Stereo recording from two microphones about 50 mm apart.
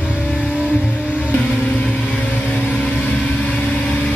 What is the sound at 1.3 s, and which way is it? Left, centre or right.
Vehicle, left.